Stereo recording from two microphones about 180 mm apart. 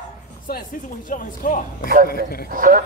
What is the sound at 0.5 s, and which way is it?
Speech, 55° left (ahead or behind).